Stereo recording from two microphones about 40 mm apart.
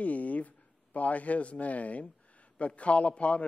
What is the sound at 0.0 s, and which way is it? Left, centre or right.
A man's voice, left.